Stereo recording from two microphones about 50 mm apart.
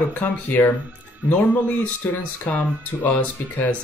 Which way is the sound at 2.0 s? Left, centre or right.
Left.